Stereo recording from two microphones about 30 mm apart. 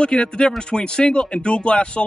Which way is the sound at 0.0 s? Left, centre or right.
Left.